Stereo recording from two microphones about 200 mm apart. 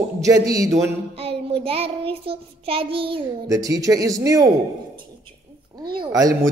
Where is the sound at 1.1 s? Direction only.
30° right (ahead or behind).